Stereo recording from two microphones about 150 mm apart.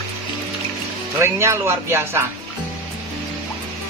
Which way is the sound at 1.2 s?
20° right (ahead or behind).